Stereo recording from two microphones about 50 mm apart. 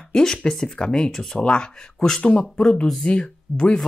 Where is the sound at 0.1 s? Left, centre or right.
Centre.